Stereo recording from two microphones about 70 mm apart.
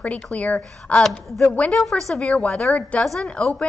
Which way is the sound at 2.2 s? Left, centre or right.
Centre.